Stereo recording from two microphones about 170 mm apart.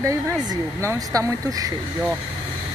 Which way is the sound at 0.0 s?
15° right (ahead or behind).